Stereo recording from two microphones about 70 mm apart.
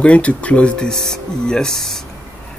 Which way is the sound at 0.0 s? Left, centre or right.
Centre.